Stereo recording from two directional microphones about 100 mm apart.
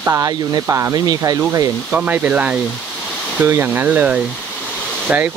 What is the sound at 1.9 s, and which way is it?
Speech, 15° right (ahead or behind).